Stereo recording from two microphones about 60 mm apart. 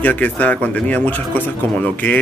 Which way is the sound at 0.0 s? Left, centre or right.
Left.